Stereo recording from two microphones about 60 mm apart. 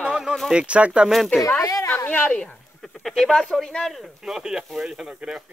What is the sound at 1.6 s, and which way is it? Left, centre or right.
Speech, left.